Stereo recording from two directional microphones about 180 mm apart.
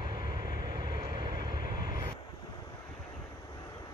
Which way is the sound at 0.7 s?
25° right (ahead or behind).